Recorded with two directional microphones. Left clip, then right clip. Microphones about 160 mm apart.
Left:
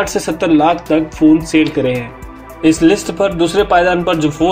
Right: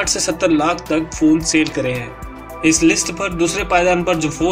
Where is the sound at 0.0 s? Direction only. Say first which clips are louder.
Left 2 dB; 30° left (ahead or behind).